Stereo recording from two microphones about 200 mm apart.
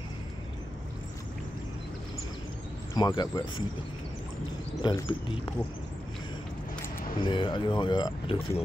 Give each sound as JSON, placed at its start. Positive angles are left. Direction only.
{"t": 3.0, "sound": "speech", "side_deg": 20}
{"t": 4.8, "sound": "speech", "side_deg": 25}
{"t": 7.2, "sound": "speech", "side_deg": 25}